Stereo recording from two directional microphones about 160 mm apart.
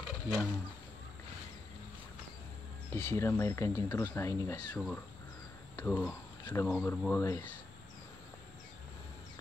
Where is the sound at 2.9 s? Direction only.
15° left (ahead or behind).